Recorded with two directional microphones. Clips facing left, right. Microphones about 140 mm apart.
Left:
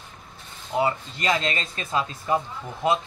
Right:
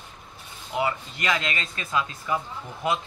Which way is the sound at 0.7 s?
30° left (ahead or behind).